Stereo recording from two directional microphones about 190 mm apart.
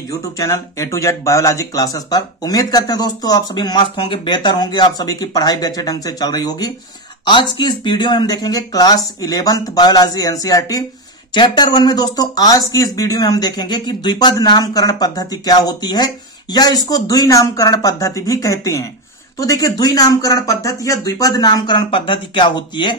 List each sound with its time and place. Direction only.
0.4 s speech: 15° left (ahead or behind)